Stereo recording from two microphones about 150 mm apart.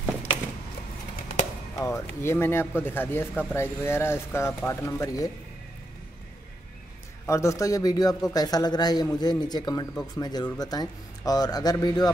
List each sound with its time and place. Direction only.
1.8 s speech: 20° left (ahead or behind)
7.2 s a man's voice: 20° left (ahead or behind)